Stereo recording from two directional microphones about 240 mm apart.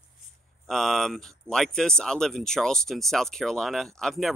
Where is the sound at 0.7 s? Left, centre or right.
Centre.